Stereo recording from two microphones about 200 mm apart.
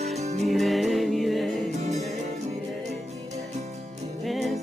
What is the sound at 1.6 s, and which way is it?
Music, 35° right (ahead or behind).